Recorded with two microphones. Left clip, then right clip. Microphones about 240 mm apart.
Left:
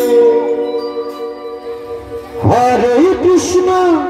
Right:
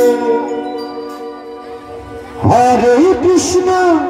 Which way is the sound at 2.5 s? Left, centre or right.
Right.